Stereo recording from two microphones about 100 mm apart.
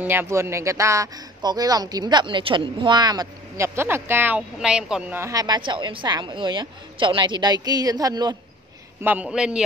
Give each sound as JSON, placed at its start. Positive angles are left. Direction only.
{"t": 0.0, "sound": "speech", "side_deg": -20}
{"t": 4.6, "sound": "a woman's voice", "side_deg": -5}
{"t": 5.1, "sound": "speech", "side_deg": -30}
{"t": 5.6, "sound": "a woman's voice", "side_deg": -55}
{"t": 9.0, "sound": "a woman's voice", "side_deg": -15}